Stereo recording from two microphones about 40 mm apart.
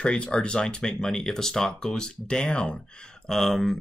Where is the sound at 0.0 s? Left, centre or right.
Left.